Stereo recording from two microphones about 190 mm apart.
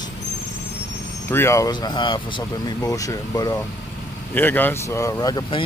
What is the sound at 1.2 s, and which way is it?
Speech, 15° left (ahead or behind).